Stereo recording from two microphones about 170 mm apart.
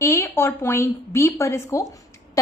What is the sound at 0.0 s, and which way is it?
A woman's voice, 15° left (ahead or behind).